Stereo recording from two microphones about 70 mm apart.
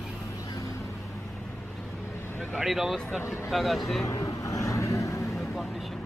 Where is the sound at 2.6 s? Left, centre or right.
Centre.